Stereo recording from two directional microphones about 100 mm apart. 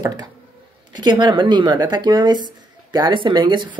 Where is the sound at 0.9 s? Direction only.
50° right (ahead or behind).